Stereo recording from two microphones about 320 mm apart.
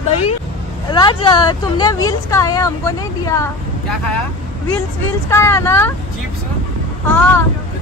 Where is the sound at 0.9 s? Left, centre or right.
Centre.